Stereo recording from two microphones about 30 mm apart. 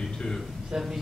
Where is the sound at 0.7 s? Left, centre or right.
Right.